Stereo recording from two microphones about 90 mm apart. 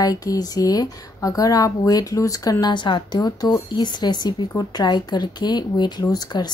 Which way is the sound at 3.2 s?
50° left (ahead or behind).